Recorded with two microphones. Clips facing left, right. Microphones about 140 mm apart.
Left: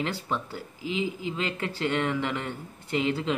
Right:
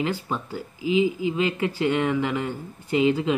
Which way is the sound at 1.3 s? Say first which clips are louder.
Right 7 dB; 10° right (ahead or behind).